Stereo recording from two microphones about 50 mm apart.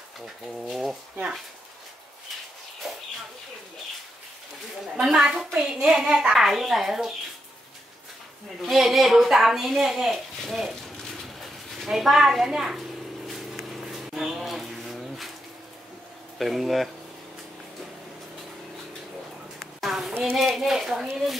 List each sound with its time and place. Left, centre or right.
0.2 s speech: centre
4.9 s a child's voice: centre
6.3 s speech: centre
8.6 s speech: centre
13.3 s a sound: centre
16.3 s speech: centre
19.8 s a sound: centre
20.3 s speech: centre